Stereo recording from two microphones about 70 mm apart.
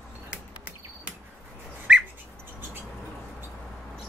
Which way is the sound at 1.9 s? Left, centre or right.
Centre.